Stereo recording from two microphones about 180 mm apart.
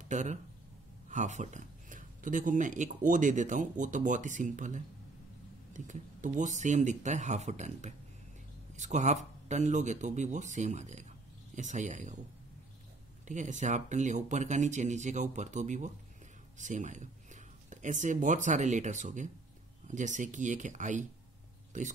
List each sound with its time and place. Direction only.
0.0 s speech: 40° right (ahead or behind)
13.3 s speech: 45° right (ahead or behind)